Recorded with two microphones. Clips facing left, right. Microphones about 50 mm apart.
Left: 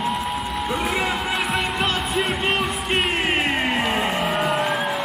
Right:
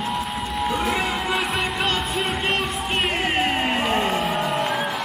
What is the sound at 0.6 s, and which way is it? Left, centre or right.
Music, centre.